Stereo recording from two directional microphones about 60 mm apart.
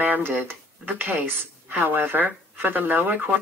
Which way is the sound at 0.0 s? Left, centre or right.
Right.